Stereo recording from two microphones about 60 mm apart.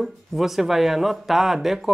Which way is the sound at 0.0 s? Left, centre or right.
Centre.